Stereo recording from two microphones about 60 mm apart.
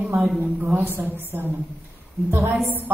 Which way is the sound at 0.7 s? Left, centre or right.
Right.